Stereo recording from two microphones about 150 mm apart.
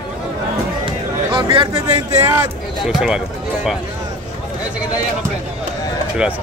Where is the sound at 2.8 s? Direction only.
5° right (ahead or behind).